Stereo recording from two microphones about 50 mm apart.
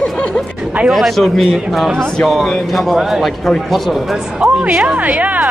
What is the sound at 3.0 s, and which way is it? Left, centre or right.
Speech, centre.